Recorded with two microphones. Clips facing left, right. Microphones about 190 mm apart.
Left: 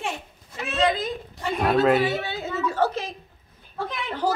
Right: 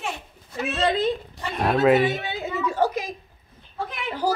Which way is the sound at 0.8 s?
30° right (ahead or behind).